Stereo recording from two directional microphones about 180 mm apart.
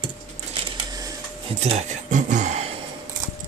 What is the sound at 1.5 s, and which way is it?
Speech, 35° right (ahead or behind).